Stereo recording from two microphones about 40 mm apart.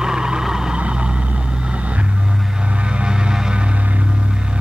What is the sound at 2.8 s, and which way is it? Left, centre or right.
Music, right.